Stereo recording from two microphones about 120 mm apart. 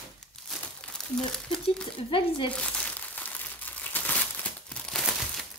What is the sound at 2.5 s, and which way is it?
Crumpling, 10° left (ahead or behind).